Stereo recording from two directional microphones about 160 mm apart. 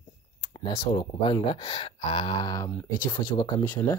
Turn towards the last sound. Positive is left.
turn(degrees=20)  # may be behind; listen again after turning